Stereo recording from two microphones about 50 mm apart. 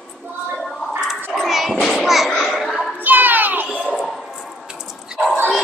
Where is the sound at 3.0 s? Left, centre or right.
Right.